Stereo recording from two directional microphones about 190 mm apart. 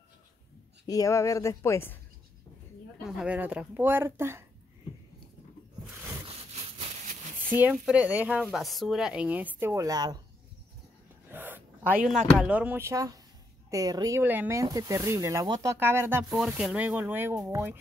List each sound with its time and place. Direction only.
0.8 s speech: 20° left (ahead or behind)
3.0 s speech: 5° right (ahead or behind)
7.5 s speech: 5° right (ahead or behind)
11.2 s a sound: 10° right (ahead or behind)
11.9 s speech: 5° right (ahead or behind)